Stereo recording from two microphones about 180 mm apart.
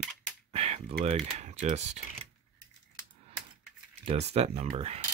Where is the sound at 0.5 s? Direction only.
35° right (ahead or behind).